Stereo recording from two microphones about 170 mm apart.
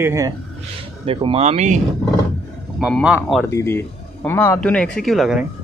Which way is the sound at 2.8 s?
5° right (ahead or behind).